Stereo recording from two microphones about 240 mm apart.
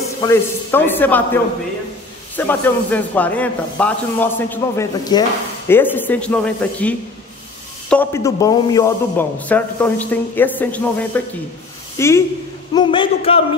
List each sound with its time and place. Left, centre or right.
0.2 s a man's voice: centre